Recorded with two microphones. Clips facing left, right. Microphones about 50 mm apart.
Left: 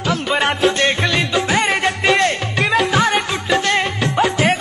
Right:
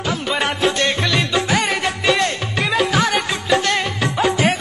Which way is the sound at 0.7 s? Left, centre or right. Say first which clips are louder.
Left 2 dB; centre.